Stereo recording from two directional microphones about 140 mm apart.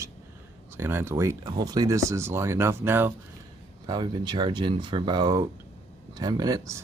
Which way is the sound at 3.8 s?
30° right (ahead or behind).